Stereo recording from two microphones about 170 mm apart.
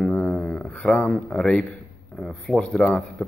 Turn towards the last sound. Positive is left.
turn(degrees=0)  # may be behind; listen again after turning